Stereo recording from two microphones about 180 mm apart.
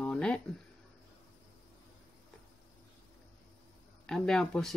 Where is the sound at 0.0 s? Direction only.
5° left (ahead or behind).